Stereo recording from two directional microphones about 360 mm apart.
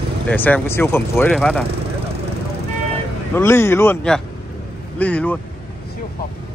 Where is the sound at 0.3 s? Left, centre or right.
Centre.